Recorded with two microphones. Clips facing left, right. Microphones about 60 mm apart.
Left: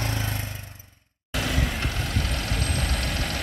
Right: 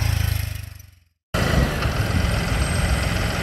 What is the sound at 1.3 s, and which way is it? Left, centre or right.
Vehicle, right.